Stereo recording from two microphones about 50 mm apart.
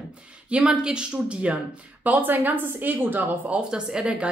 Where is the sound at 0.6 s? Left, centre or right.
Centre.